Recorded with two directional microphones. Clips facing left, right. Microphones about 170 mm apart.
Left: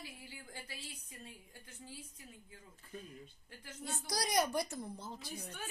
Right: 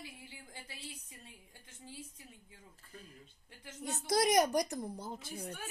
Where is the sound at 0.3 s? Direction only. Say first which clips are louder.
Left 2 dB; 25° right (ahead or behind).